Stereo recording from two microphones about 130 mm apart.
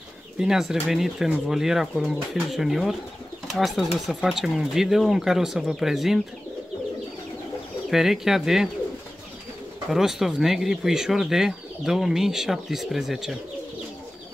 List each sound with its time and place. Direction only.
0.4 s speech: 5° right (ahead or behind)
7.9 s speech: 5° right (ahead or behind)
9.8 s speech: 5° right (ahead or behind)